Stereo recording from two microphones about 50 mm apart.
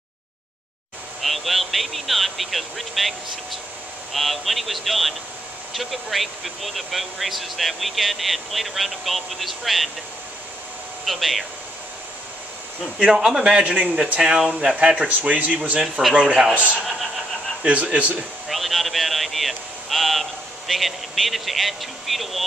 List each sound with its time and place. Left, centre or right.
1.2 s speech: centre
11.1 s speech: centre
13.1 s speech: centre
15.0 s speech: right
15.8 s speech: centre
16.2 s speech: centre
17.6 s speech: right
18.5 s a sound: centre